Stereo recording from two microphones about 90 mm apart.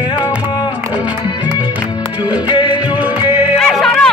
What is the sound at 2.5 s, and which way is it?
Music, 60° left (ahead or behind).